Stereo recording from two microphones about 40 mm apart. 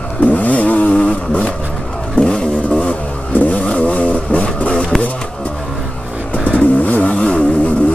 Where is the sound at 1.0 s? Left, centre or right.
Left.